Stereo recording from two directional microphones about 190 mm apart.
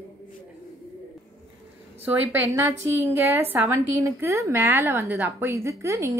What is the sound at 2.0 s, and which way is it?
A woman's voice, 10° right (ahead or behind).